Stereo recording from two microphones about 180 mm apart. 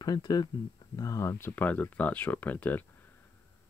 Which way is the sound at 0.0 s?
20° left (ahead or behind).